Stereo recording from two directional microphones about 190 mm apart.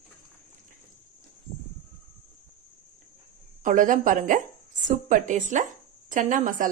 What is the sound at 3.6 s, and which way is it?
Speech, 45° right (ahead or behind).